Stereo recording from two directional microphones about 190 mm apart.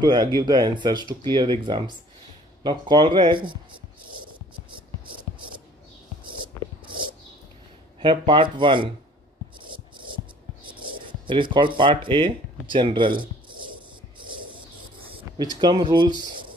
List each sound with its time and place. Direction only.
0.0 s speech: 20° right (ahead or behind)
8.0 s speech: 25° right (ahead or behind)
10.7 s speech: 25° right (ahead or behind)
15.0 s a sound: 30° right (ahead or behind)
15.5 s speech: 20° right (ahead or behind)